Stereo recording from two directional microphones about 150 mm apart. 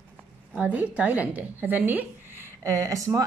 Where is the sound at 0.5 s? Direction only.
10° right (ahead or behind).